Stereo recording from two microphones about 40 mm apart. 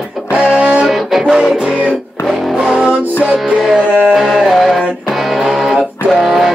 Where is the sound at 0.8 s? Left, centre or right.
Centre.